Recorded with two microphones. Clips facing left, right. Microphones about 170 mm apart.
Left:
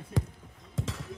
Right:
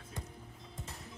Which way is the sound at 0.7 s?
90° left.